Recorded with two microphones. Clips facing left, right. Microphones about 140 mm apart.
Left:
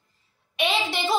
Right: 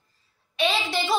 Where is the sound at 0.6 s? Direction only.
20° left (ahead or behind).